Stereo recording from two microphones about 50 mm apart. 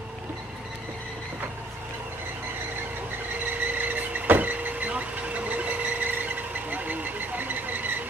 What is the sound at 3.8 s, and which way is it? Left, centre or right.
Vehicle, right.